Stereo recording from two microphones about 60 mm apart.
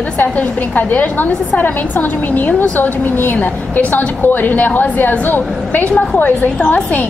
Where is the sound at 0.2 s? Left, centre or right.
Left.